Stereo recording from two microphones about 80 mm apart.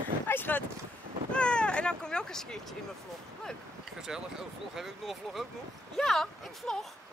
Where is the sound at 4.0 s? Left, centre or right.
Centre.